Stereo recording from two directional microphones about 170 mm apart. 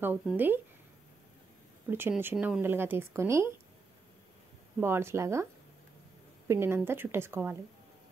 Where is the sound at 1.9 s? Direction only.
10° right (ahead or behind).